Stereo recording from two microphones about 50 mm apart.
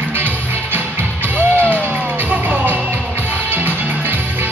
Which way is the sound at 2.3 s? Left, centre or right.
Right.